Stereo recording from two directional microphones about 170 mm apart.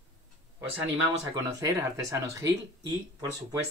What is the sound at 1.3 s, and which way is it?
Speech, 20° right (ahead or behind).